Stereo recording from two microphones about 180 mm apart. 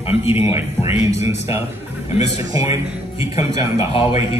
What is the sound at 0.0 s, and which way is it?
A man's voice, 35° left (ahead or behind).